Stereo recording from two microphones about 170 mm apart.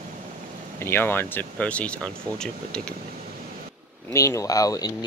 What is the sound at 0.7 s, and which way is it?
Speech, 15° left (ahead or behind).